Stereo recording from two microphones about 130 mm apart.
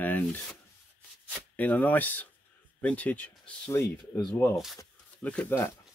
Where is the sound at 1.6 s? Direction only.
10° left (ahead or behind).